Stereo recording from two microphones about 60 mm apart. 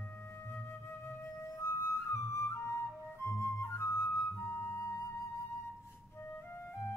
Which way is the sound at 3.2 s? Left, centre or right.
Left.